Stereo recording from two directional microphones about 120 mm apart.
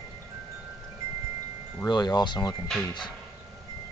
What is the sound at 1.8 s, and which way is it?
Speech, 35° left (ahead or behind).